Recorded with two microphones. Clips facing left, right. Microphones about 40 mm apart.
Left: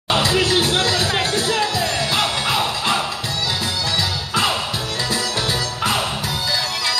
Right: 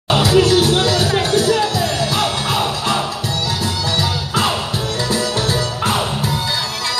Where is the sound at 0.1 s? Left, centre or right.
Left.